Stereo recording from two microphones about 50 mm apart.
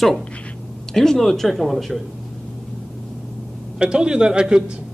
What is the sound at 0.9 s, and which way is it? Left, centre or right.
Speech, centre.